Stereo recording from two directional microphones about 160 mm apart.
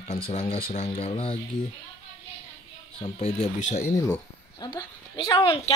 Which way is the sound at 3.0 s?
40° left (ahead or behind).